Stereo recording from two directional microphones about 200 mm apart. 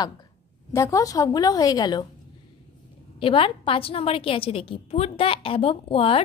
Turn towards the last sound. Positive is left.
turn(degrees=30)  # may be behind; listen again after turning